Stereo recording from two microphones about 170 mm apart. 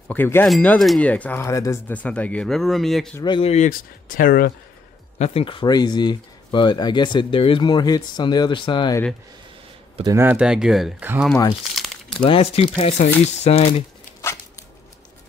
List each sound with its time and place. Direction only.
0.1 s speech: 10° left (ahead or behind)
3.2 s speech: 30° left (ahead or behind); by 4.5 s 55° left (ahead or behind)
5.2 s speech: 35° left (ahead or behind)
10.0 s speech: 15° right (ahead or behind)
12.2 s speech: 35° left (ahead or behind)